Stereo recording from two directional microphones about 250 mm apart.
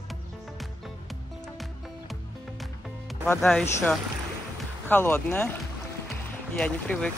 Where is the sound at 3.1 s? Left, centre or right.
Centre.